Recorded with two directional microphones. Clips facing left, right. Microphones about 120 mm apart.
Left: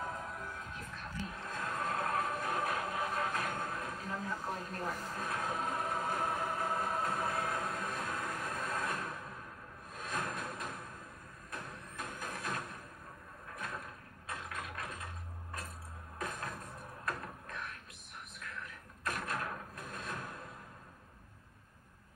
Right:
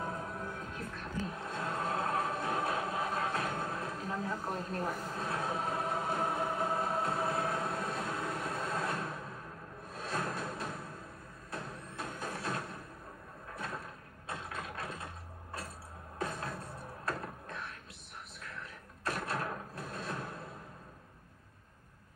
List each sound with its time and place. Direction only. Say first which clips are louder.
0.3 s music: right 3 dB; 40° right (ahead or behind)
1.3 s music: right 3 dB; 25° right (ahead or behind)
11.5 s vehicle: right 3 dB; 30° right (ahead or behind)
14.2 s a sound: right 2 dB; 30° right (ahead or behind)
16.2 s music: right 3 dB; 30° right (ahead or behind)
19.0 s a sound: right 2 dB; 30° right (ahead or behind)